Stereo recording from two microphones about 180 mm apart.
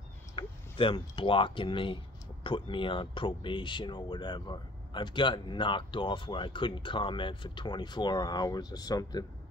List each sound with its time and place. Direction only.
0.4 s speech: 30° left (ahead or behind)